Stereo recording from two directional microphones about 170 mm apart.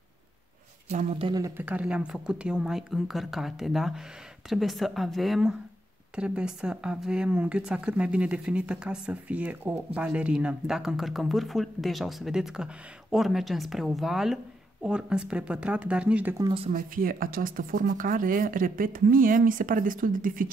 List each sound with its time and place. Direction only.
0.8 s speech: 35° right (ahead or behind)
1.6 s speech: 10° right (ahead or behind)
16.7 s speech: 55° right (ahead or behind)